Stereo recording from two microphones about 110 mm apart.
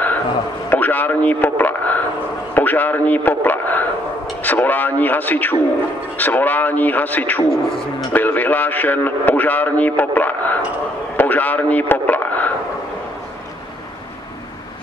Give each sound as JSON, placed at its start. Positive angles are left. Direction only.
{"t": 0.7, "sound": "a man's voice", "side_deg": 15}